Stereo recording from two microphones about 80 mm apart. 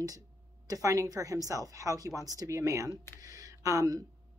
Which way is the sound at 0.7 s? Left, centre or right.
Right.